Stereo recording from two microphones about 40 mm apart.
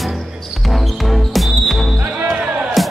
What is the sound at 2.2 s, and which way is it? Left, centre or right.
Music, right.